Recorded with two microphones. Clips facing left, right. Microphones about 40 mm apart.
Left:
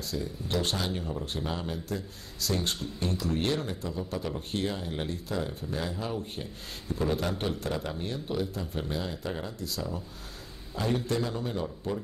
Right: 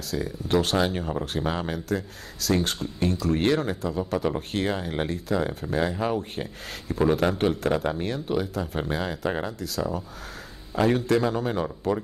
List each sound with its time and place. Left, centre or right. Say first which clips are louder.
0.5 s speech: right 8 dB; right